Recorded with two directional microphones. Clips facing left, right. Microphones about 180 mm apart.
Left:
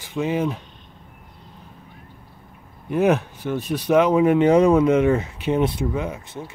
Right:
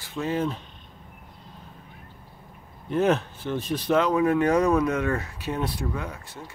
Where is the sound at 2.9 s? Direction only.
10° left (ahead or behind).